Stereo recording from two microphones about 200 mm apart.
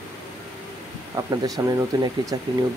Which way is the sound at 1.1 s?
15° right (ahead or behind).